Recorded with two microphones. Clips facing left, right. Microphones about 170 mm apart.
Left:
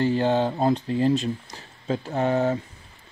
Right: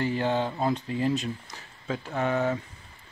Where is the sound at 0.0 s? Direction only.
30° left (ahead or behind).